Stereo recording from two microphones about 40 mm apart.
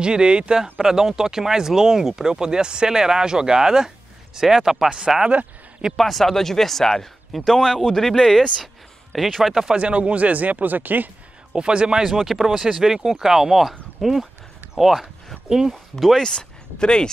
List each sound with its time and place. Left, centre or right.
0.0 s speech: right
0.7 s speech: centre
5.9 s a man's voice: centre
9.8 s speech: right
11.5 s speech: right
12.0 s speech: centre
15.7 s speech: centre
16.2 s speech: left